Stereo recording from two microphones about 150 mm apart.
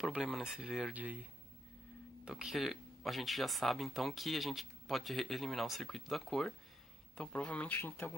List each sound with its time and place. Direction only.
0.0 s speech: centre (ahead or behind)
2.2 s speech: 5° right (ahead or behind); by 8.1 s 10° left (ahead or behind)